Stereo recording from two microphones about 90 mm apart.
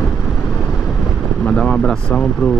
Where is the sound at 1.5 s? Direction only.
10° left (ahead or behind).